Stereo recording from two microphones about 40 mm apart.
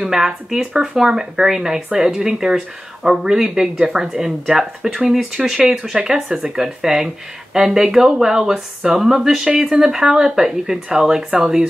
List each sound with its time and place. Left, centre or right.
0.0 s speech: centre
9.5 s speech: right
9.8 s speech: centre